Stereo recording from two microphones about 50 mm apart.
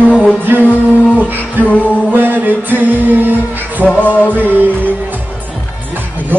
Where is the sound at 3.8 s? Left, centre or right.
Left.